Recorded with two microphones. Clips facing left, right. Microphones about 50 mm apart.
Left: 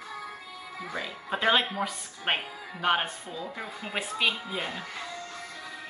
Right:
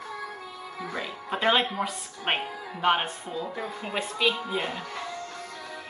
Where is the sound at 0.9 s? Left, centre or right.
Centre.